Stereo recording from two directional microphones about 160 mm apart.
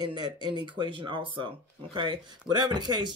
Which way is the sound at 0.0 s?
30° right (ahead or behind).